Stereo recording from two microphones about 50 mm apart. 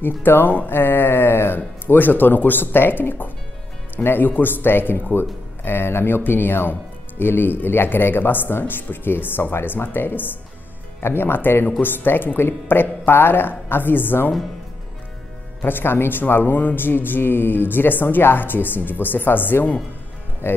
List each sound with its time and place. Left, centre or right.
0.0 s speech: left
15.6 s speech: left
20.4 s speech: left